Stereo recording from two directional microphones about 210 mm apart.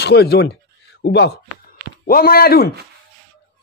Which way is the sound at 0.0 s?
50° left (ahead or behind).